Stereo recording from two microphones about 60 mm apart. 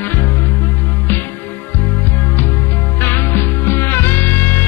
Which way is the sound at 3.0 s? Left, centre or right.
Left.